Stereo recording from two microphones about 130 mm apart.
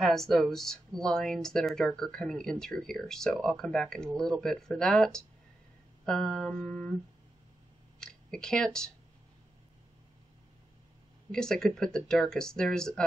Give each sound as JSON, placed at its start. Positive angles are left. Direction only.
{"t": 0.0, "sound": "speech", "side_deg": 0}
{"t": 8.0, "sound": "speech", "side_deg": 5}
{"t": 11.3, "sound": "speech", "side_deg": 5}